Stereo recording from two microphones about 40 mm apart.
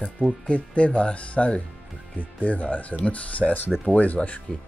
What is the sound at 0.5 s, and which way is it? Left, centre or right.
Speech, left.